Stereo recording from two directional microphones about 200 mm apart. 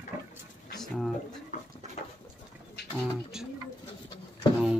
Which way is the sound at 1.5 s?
40° left (ahead or behind).